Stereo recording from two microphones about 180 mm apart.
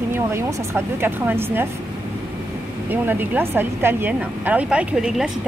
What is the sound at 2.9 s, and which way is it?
Speech, 10° right (ahead or behind).